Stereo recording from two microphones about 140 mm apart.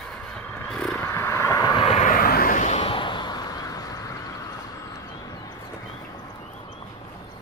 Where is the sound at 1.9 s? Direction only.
70° left (ahead or behind).